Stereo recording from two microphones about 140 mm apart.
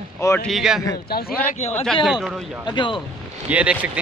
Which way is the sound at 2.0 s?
5° right (ahead or behind).